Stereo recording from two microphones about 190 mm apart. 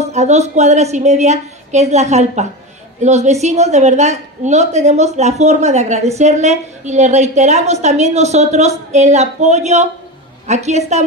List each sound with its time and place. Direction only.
0.0 s a woman's voice: 35° right (ahead or behind)